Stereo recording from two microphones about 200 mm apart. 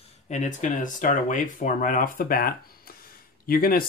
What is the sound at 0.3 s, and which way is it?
Speech, 35° left (ahead or behind).